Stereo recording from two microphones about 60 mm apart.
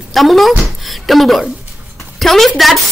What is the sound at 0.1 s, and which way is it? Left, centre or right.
A woman's voice, centre.